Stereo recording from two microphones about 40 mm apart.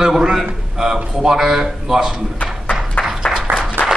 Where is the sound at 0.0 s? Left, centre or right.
Centre.